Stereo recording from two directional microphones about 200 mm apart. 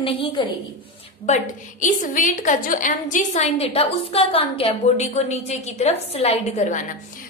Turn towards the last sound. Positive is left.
turn(degrees=30)  # may be behind; listen again after turning